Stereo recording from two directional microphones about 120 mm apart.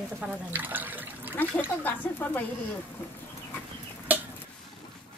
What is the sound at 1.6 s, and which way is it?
Speech, 15° left (ahead or behind).